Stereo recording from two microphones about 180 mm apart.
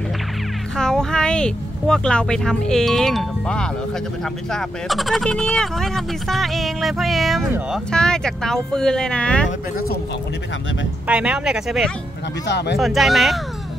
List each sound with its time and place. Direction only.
0.7 s speech: 5° left (ahead or behind)
11.1 s speech: 5° right (ahead or behind)
12.4 s speech: 70° left (ahead or behind)
12.7 s speech: centre (ahead or behind)